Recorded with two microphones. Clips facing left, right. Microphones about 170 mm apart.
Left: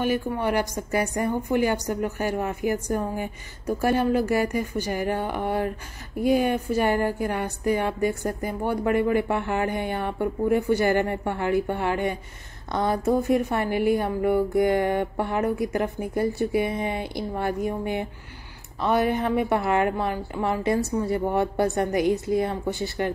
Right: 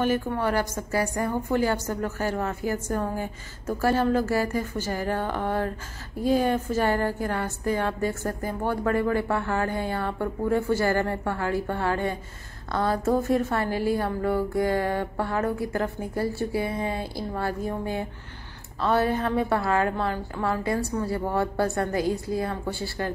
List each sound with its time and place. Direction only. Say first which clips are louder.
0.0 s a woman's voice: even; 15° left (ahead or behind)